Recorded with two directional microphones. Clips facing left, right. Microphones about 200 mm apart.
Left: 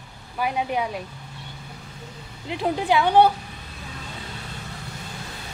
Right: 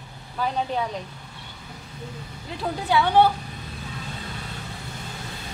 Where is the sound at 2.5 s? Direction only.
20° left (ahead or behind).